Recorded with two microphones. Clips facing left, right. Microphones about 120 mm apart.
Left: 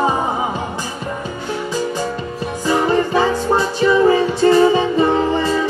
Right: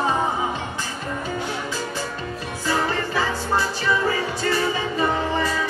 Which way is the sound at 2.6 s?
20° left (ahead or behind).